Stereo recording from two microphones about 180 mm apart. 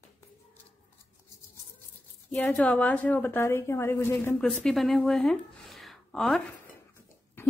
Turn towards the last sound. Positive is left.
turn(degrees=10)  # may be behind; listen again after turning